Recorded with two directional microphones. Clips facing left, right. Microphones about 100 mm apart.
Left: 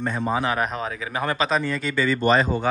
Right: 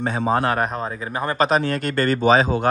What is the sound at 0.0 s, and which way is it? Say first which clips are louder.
Speech: right 4 dB; 80° right.